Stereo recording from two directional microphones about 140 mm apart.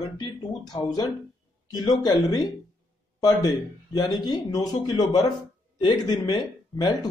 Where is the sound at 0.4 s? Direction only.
30° left (ahead or behind).